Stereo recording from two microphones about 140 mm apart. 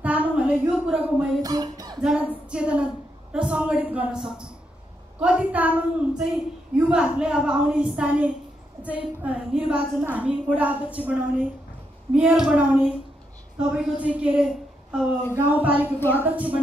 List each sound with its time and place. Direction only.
0.0 s speech: 10° right (ahead or behind)
1.4 s cough: 25° right (ahead or behind)
2.0 s a sound: 5° right (ahead or behind)
3.3 s a woman's voice: 5° right (ahead or behind)
16.0 s a woman's voice: 15° left (ahead or behind)
16.3 s a woman's voice: 10° right (ahead or behind)